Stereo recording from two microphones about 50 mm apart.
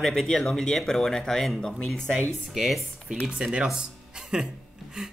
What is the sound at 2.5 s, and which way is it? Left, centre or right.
Speech, centre.